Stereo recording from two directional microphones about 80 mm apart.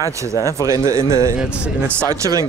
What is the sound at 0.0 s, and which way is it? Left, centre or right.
Speech, right.